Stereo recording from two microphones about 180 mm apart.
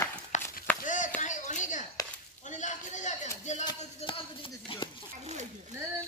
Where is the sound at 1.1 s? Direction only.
45° left (ahead or behind).